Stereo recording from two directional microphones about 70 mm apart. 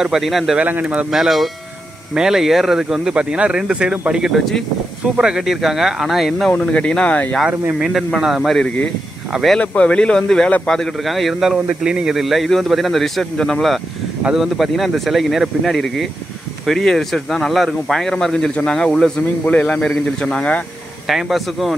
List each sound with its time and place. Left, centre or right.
0.0 s speech: centre
0.6 s speech: right
1.1 s speech: centre
6.7 s speech: centre
7.8 s speech: centre
8.5 s speech: centre
9.3 s speech: centre
9.6 s speech: centre
19.4 s speech: centre
21.1 s speech: centre